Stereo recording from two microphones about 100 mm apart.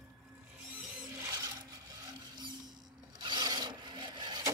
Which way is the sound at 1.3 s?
40° right (ahead or behind).